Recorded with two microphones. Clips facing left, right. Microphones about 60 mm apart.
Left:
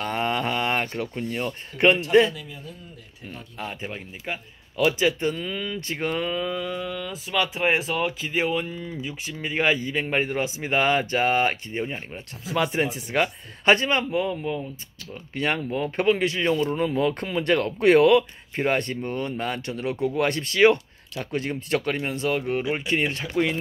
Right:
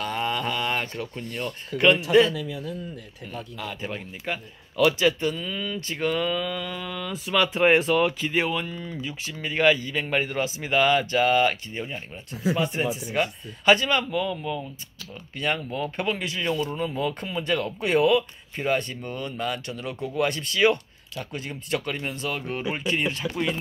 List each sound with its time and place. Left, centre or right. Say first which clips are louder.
0.0 s a sound: left 2 dB; left
1.1 s speech: left 3 dB; left
3.8 s mantra: right 1 dB; centre
5.2 s mantra: left 1 dB; left; by 8.5 s centre
8.5 s mantra: left 2 dB; centre
9.0 s speech: left 1 dB; centre
12.5 s speech: left 2 dB; left
13.7 s speech: even; left
15.3 s speech: left 2 dB; left
22.6 s speech: left 3 dB; left
22.9 s speech: left 3 dB; left